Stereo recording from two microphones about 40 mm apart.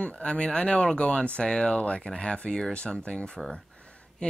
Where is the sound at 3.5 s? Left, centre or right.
Left.